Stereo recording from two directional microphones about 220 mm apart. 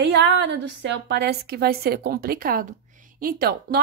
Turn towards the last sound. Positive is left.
turn(degrees=-40)  # may be behind; listen again after turning